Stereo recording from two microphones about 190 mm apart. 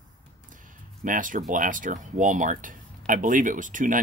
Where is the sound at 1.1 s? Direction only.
45° right (ahead or behind).